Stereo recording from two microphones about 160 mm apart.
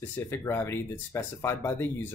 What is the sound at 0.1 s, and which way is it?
Speech, 15° left (ahead or behind).